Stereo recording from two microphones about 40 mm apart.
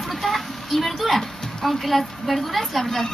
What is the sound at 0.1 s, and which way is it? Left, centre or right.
A woman's voice, centre.